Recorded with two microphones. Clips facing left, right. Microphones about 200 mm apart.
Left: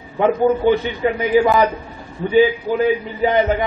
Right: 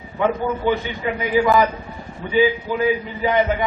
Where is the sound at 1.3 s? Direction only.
45° left (ahead or behind).